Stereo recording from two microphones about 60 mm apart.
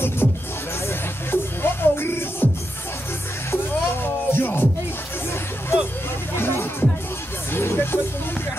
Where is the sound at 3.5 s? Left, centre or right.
Left.